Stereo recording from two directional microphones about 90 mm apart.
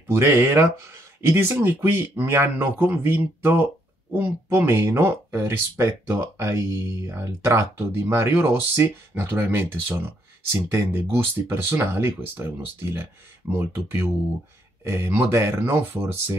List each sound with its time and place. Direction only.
0.0 s speech: 30° right (ahead or behind)